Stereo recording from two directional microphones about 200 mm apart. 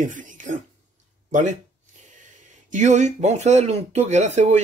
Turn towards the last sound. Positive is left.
turn(degrees=-35)  # may be behind; listen again after turning